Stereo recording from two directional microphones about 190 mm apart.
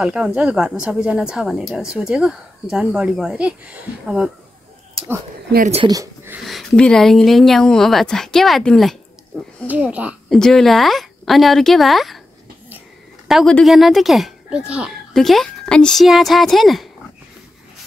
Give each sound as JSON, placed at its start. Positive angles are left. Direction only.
{"t": 0.0, "sound": "speech", "side_deg": -5}
{"t": 5.9, "sound": "speech", "side_deg": -15}
{"t": 6.4, "sound": "speech", "side_deg": 0}
{"t": 13.3, "sound": "speech", "side_deg": 0}